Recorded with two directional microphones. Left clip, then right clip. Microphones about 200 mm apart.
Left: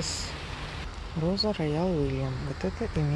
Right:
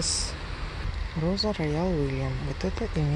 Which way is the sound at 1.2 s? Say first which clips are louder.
Even; centre (ahead or behind).